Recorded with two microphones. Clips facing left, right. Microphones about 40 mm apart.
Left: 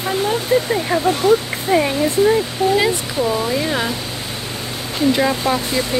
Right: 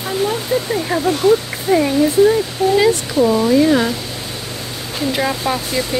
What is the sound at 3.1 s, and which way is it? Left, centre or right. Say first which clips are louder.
Speech: right 5 dB; centre.